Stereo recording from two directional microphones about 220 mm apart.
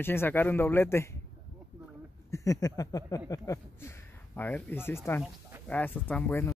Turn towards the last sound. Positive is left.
turn(degrees=10)  # may be behind; listen again after turning